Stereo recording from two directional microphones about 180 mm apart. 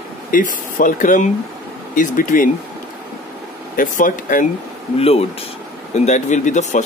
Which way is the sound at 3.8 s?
45° left (ahead or behind).